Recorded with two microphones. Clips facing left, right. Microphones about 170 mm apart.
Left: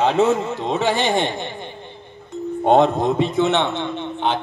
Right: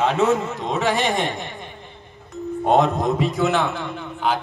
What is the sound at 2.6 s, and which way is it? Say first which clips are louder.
A man's voice: left 3 dB; 30° left (ahead or behind).